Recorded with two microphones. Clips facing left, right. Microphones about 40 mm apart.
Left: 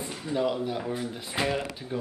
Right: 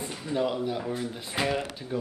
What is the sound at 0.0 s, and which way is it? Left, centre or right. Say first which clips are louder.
Speech: even; centre.